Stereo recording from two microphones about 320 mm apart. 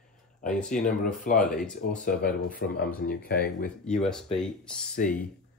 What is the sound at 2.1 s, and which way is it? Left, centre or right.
Speech, left.